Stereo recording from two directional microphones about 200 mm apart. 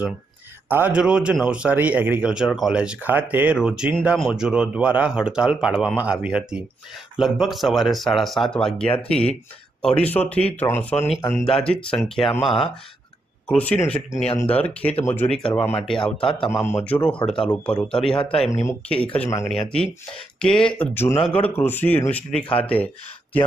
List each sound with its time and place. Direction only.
0.7 s speech: 10° right (ahead or behind); by 15.8 s 10° left (ahead or behind)
16.0 s a man's voice: 25° left (ahead or behind)
16.6 s speech: 10° left (ahead or behind)
18.1 s a man's voice: 25° left (ahead or behind)
18.7 s speech: 5° left (ahead or behind)